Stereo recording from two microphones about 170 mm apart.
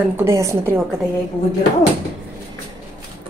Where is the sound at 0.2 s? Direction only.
15° right (ahead or behind).